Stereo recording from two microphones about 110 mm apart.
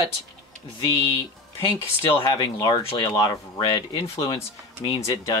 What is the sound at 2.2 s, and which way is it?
Speech, 40° left (ahead or behind).